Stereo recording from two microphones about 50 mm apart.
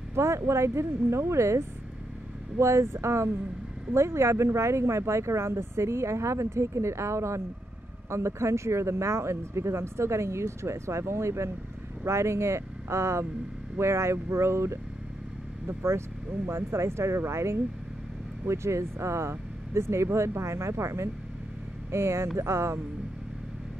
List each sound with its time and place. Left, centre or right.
0.1 s speech: right
2.6 s speech: right